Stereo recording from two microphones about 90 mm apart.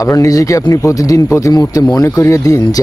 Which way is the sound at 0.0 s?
40° left (ahead or behind).